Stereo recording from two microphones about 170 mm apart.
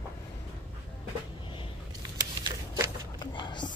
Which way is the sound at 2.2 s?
20° right (ahead or behind).